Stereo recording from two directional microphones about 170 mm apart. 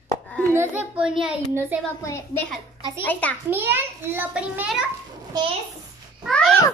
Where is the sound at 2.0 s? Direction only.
20° left (ahead or behind).